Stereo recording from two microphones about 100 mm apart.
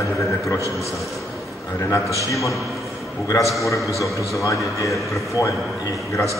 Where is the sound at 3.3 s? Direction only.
30° left (ahead or behind).